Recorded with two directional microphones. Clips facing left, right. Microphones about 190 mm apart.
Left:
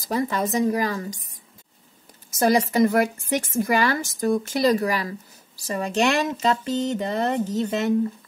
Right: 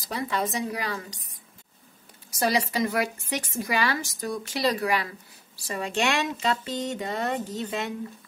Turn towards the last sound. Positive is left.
turn(degrees=45)  # may be behind; listen again after turning